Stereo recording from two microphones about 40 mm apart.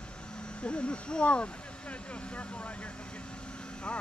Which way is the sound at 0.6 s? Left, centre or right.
Left.